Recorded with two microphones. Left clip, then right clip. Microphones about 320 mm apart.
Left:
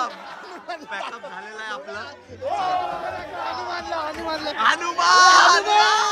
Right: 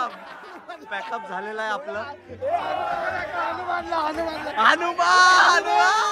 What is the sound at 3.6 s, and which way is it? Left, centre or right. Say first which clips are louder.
Battle cry: right 2 dB; centre.